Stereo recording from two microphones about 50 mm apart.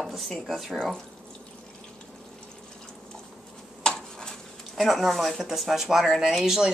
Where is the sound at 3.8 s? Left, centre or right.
Centre.